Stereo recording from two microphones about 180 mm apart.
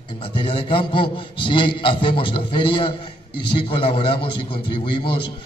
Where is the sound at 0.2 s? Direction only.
25° left (ahead or behind).